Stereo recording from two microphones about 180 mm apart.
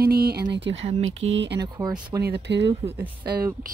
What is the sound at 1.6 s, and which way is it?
Speech, 20° right (ahead or behind).